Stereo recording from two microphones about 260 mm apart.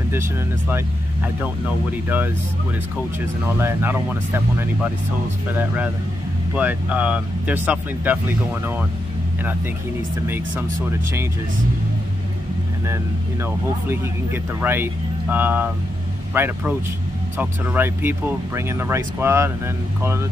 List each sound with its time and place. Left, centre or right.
0.1 s speech: centre
3.5 s speech: centre
10.2 s speech: centre
12.8 s speech: centre